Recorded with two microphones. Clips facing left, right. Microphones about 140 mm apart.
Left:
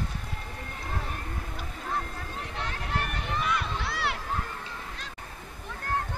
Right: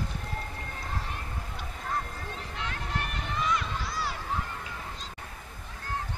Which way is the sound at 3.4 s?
65° left (ahead or behind).